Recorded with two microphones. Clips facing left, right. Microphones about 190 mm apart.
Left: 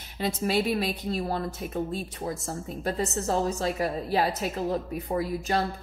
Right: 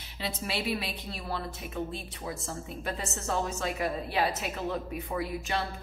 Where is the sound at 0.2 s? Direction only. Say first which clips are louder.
Left 8 dB; 45° left (ahead or behind).